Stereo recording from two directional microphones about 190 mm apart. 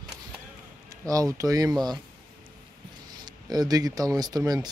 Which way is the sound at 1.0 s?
15° right (ahead or behind).